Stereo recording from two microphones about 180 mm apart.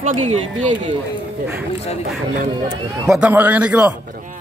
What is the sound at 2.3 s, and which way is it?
Speech, 45° right (ahead or behind).